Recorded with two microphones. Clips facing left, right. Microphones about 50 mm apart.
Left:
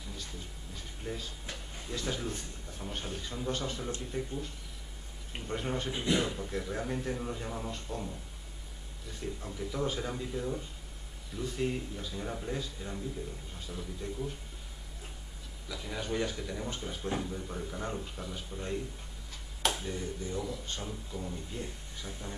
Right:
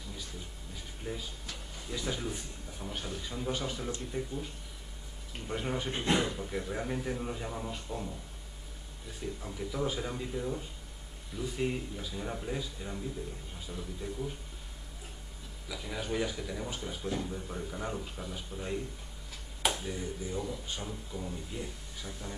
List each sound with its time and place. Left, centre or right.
0.7 s a sound: centre
1.4 s a sound: left
1.9 s a man's voice: centre
5.5 s a man's voice: centre
9.2 s a man's voice: centre
15.7 s a man's voice: centre
19.8 s a man's voice: centre